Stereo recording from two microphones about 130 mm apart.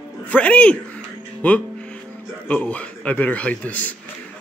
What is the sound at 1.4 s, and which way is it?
Music, 10° left (ahead or behind).